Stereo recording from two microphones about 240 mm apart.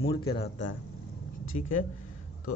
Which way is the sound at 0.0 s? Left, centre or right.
Left.